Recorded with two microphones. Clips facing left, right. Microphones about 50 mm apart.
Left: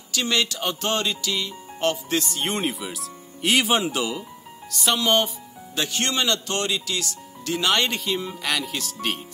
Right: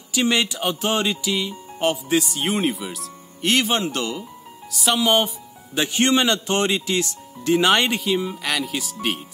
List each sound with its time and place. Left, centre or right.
0.1 s speech: centre
5.8 s a man's voice: right
8.0 s speech: centre